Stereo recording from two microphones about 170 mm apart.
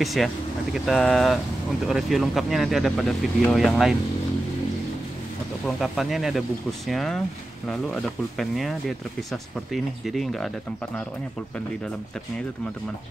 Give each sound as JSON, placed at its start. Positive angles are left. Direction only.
{"t": 0.0, "sound": "speech", "side_deg": 0}
{"t": 5.7, "sound": "speech", "side_deg": 0}